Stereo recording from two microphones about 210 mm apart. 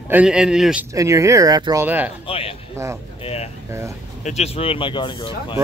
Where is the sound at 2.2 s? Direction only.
25° left (ahead or behind).